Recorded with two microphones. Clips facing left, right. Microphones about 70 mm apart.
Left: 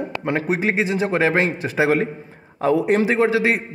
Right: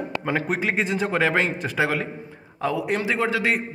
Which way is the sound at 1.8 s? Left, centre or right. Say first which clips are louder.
Left 6 dB; left.